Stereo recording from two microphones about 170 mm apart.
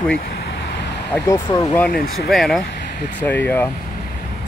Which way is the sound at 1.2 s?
20° left (ahead or behind).